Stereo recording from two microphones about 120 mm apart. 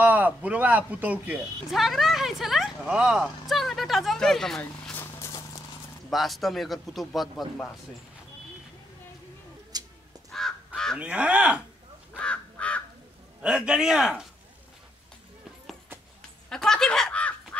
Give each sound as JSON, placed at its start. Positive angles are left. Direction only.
{"t": 0.0, "sound": "a man's voice", "side_deg": -15}
{"t": 1.7, "sound": "speech", "side_deg": 0}
{"t": 4.9, "sound": "vehicle", "side_deg": 20}
{"t": 6.0, "sound": "speech", "side_deg": 0}
{"t": 9.7, "sound": "a sound", "side_deg": -35}
{"t": 11.0, "sound": "a man's voice", "side_deg": -10}
{"t": 12.2, "sound": "crow", "side_deg": 10}
{"t": 13.4, "sound": "speech", "side_deg": -10}
{"t": 16.2, "sound": "a sound", "side_deg": 5}